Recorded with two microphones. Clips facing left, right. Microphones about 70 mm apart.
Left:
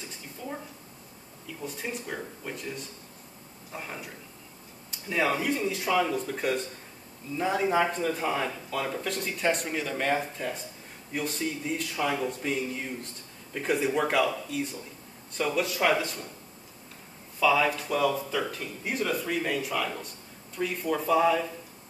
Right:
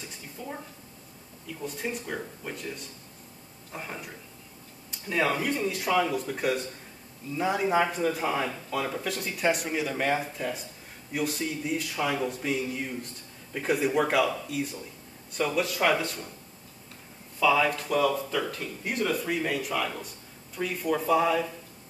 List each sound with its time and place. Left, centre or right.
1.6 s speech: centre
5.1 s speech: centre
17.4 s speech: centre